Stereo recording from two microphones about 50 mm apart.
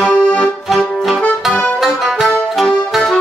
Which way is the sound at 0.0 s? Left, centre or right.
Centre.